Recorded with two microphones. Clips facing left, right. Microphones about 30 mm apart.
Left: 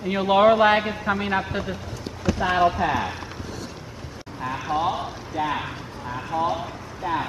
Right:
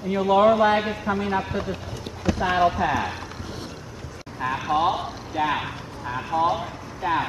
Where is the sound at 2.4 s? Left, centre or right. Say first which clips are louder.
Even; centre.